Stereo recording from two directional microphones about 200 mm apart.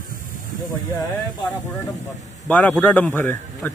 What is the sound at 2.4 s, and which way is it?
Speech, 5° left (ahead or behind).